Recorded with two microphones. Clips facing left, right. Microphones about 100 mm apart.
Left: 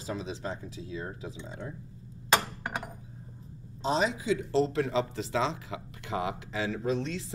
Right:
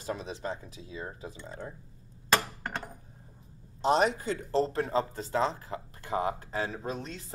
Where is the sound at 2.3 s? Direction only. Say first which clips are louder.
Left 1 dB; 15° left (ahead or behind).